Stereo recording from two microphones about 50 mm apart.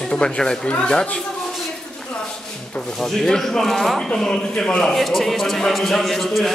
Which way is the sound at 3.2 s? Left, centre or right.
Centre.